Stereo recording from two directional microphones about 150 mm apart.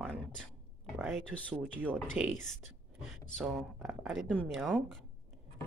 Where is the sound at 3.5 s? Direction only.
Centre (ahead or behind).